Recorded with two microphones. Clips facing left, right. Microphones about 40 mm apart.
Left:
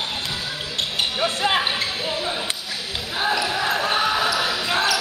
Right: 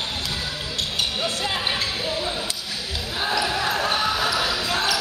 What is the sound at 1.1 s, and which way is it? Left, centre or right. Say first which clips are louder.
Music: left 5 dB; left.